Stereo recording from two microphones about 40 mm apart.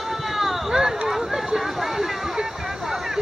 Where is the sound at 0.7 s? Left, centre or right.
Centre.